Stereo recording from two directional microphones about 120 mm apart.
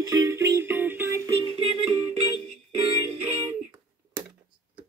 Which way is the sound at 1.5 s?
50° right (ahead or behind).